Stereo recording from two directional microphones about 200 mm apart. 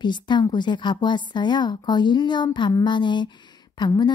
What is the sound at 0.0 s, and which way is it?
A woman's voice, 20° left (ahead or behind).